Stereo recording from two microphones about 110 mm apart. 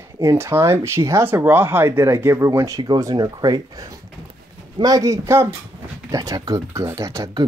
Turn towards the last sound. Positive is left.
turn(degrees=-30)  # may be behind; listen again after turning